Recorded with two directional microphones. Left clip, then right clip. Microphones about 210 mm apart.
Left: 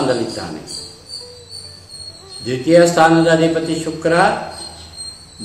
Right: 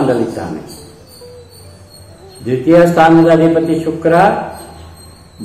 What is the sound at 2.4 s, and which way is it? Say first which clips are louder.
A man's voice: right 3 dB; 15° left (ahead or behind).